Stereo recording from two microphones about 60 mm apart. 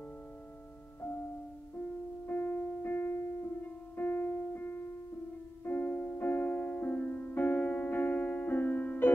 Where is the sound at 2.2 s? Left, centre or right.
Left.